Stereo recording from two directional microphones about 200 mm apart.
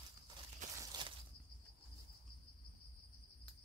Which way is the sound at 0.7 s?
20° right (ahead or behind).